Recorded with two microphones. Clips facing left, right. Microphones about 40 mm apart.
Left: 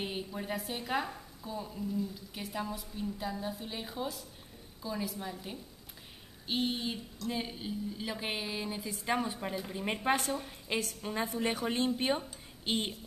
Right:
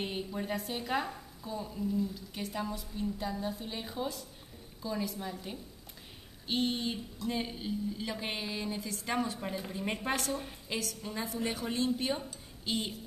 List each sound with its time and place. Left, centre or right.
0.0 s a woman's voice: centre; by 12.9 s left